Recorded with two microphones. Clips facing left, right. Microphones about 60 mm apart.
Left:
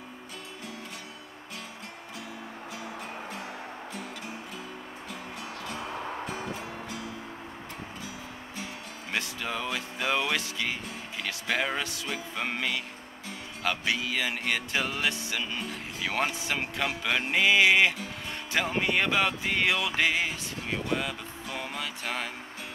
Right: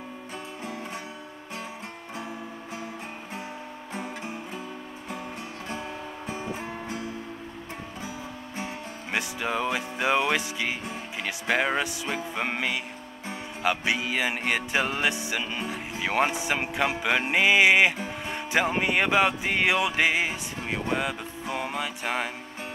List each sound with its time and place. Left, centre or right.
9.1 s music: centre